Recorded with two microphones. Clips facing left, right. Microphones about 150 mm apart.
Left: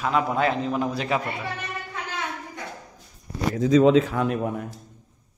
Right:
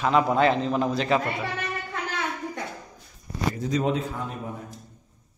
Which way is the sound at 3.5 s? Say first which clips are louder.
Left 11 dB; 90° left.